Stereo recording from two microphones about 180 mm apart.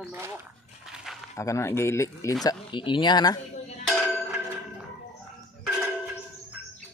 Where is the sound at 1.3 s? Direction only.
15° left (ahead or behind).